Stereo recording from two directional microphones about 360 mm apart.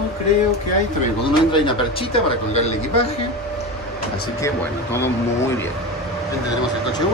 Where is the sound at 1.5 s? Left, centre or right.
Centre.